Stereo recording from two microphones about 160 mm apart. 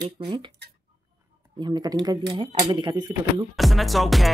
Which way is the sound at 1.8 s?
25° right (ahead or behind).